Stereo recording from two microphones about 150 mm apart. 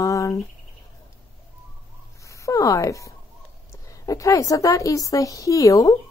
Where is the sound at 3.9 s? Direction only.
20° left (ahead or behind).